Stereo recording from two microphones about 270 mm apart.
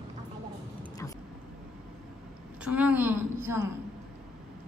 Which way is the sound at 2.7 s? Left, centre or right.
Centre.